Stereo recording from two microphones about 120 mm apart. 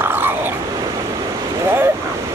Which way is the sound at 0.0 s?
15° right (ahead or behind).